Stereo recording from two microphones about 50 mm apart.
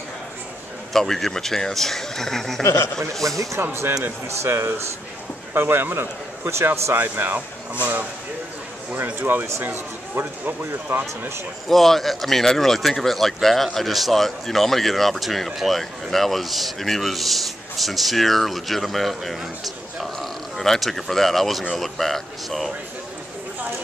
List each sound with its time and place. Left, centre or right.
0.9 s speech: centre
2.6 s a man's voice: left
3.3 s speech: right
4.5 s speech: right
7.0 s speech: right
11.7 s speech: centre